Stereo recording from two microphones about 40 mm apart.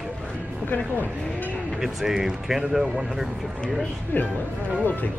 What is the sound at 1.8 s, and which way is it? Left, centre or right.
Speech, centre.